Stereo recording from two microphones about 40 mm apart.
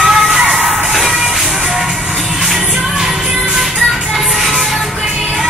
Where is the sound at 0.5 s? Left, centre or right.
Centre.